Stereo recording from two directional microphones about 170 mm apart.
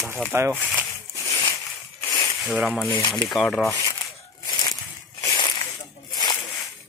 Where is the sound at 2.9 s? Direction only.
25° left (ahead or behind).